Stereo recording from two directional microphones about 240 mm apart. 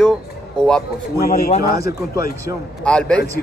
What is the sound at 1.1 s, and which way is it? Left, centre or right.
Speech, left.